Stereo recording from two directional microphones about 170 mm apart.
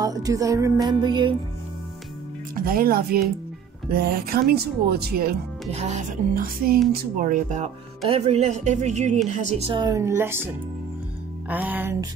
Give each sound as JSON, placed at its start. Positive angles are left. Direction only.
{"t": 0.0, "sound": "music", "side_deg": -20}
{"t": 2.5, "sound": "speech", "side_deg": -60}
{"t": 5.7, "sound": "music", "side_deg": -40}
{"t": 6.9, "sound": "speech", "side_deg": -60}
{"t": 9.8, "sound": "a woman's voice", "side_deg": -20}